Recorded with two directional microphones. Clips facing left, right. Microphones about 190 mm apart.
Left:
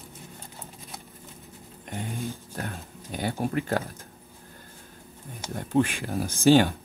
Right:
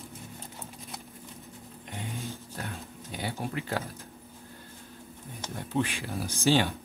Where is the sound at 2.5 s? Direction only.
50° left (ahead or behind).